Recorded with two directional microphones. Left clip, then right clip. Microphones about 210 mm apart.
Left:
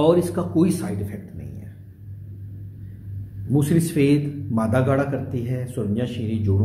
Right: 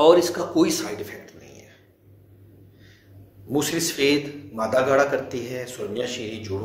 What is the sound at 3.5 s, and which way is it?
A man's voice, 5° right (ahead or behind).